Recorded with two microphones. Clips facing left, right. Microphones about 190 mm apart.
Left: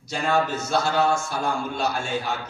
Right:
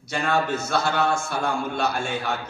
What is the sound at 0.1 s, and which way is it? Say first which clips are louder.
A man's voice: even; 55° right (ahead or behind).